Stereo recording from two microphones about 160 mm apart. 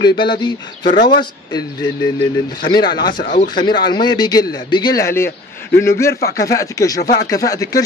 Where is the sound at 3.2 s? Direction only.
50° left (ahead or behind).